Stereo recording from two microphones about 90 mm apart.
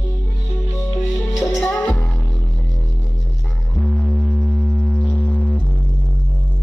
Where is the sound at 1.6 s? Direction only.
15° left (ahead or behind).